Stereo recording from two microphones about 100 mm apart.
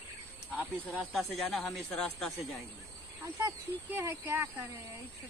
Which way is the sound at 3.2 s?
30° right (ahead or behind).